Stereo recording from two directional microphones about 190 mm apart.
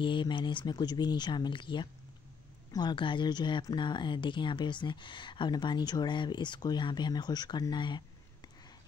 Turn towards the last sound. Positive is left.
turn(degrees=25)  # may be behind; listen again after turning